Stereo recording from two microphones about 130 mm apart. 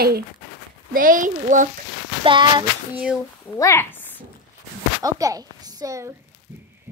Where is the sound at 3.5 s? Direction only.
20° left (ahead or behind).